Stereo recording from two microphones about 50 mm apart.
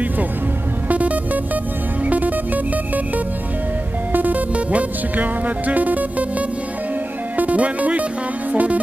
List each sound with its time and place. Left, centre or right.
0.8 s music: right
4.1 s music: right